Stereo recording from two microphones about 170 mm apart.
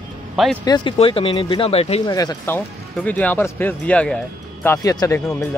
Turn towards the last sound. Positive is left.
turn(degrees=20)  # may be behind; listen again after turning